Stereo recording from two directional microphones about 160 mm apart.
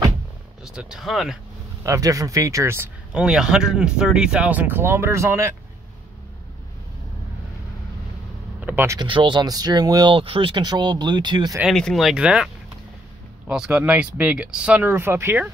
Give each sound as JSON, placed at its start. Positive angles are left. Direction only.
{"t": 0.7, "sound": "speech", "side_deg": -5}
{"t": 1.8, "sound": "speech", "side_deg": -20}
{"t": 3.1, "sound": "speech", "side_deg": -5}
{"t": 8.5, "sound": "a sound", "side_deg": -10}
{"t": 9.0, "sound": "speech", "side_deg": -30}
{"t": 11.6, "sound": "speech", "side_deg": 5}
{"t": 13.5, "sound": "speech", "side_deg": -5}